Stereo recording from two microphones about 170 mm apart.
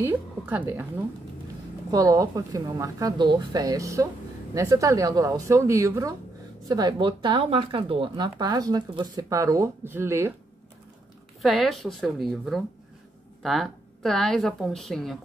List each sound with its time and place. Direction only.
0.0 s a woman's voice: 10° right (ahead or behind)
1.9 s speech: 20° right (ahead or behind)
11.4 s a woman's voice: centre (ahead or behind)